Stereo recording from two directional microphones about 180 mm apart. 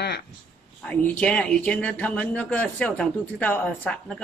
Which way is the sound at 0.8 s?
5° left (ahead or behind).